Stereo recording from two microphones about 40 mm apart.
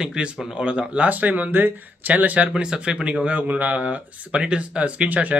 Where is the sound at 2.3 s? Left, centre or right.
Right.